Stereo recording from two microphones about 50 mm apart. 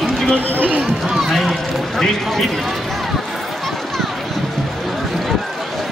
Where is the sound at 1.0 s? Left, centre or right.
Centre.